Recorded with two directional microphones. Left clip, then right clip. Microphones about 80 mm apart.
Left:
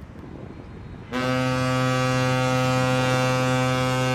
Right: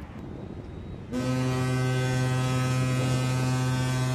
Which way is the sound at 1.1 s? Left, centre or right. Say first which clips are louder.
Left 6 dB; left.